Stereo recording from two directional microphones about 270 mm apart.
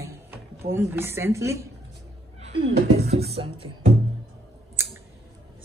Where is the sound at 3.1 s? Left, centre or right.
Right.